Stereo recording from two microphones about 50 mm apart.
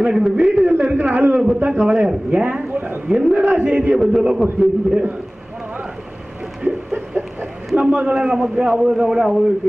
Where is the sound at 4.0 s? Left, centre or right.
Centre.